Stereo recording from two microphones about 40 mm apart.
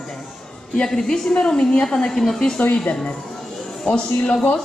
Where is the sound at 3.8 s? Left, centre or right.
Left.